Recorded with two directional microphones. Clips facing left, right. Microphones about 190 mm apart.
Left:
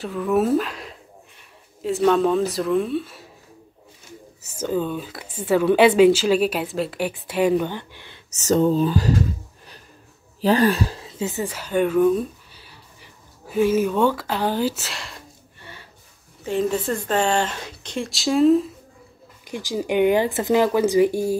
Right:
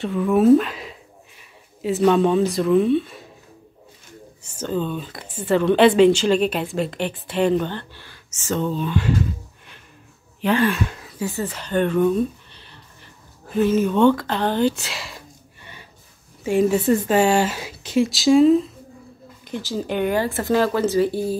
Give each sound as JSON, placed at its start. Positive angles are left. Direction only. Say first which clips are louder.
{"t": 0.0, "sound": "speech", "louder": "right 4 dB", "side_deg": 0}
{"t": 4.4, "sound": "speech", "louder": "left 1 dB", "side_deg": 5}
{"t": 8.3, "sound": "speech", "louder": "left 6 dB", "side_deg": 40}
{"t": 10.4, "sound": "speech", "louder": "left 2 dB", "side_deg": 35}
{"t": 11.4, "sound": "speech", "louder": "even", "side_deg": 10}
{"t": 15.6, "sound": "a sound", "louder": "left 2 dB", "side_deg": -15}
{"t": 16.4, "sound": "speech", "louder": "right 5 dB", "side_deg": -10}
{"t": 19.4, "sound": "speech", "louder": "even", "side_deg": 15}